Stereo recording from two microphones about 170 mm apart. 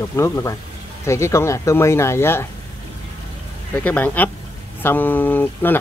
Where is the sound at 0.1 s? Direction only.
15° left (ahead or behind).